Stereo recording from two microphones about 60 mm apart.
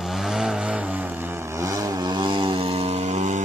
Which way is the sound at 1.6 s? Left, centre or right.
Right.